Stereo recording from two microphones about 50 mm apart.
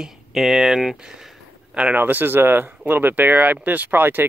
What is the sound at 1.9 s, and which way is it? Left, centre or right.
Speech, right.